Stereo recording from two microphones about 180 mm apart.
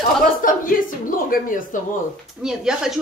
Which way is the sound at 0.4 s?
50° left (ahead or behind).